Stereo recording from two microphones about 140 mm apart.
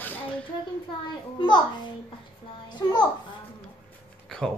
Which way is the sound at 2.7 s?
30° left (ahead or behind).